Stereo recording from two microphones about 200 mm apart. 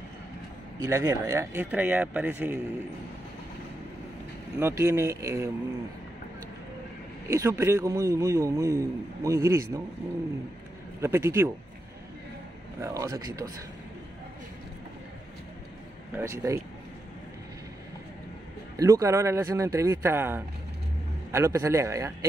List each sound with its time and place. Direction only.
0.7 s a man's voice: 15° right (ahead or behind)
4.6 s a man's voice: 15° right (ahead or behind)
7.2 s a man's voice: 15° right (ahead or behind)
11.0 s a man's voice: 15° right (ahead or behind)
12.8 s a man's voice: 15° right (ahead or behind)
16.2 s a man's voice: 15° right (ahead or behind)
18.8 s a man's voice: 15° right (ahead or behind)